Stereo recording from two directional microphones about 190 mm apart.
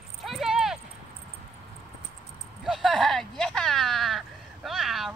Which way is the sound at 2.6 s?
Centre (ahead or behind).